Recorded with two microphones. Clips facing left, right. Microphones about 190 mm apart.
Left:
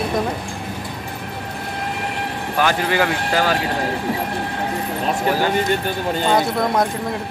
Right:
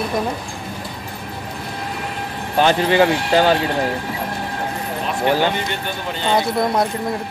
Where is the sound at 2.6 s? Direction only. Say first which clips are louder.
Right 4 dB; 25° right (ahead or behind).